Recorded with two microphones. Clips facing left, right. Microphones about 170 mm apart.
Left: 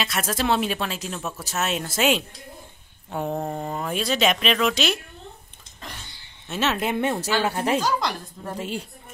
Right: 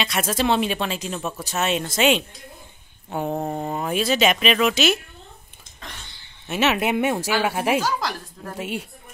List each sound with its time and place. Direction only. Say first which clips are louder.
0.0 s speech: right 3 dB; centre (ahead or behind)
6.8 s a woman's voice: right 2 dB; 10° right (ahead or behind)